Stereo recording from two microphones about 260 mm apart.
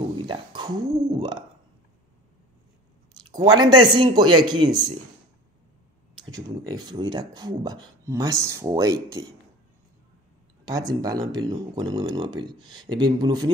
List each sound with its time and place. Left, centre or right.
0.2 s a sound: centre
3.3 s speech: centre
6.3 s speech: centre
10.6 s speech: centre